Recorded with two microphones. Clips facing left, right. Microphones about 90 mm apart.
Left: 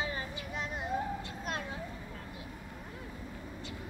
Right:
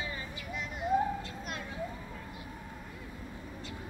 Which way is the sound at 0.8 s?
30° left (ahead or behind).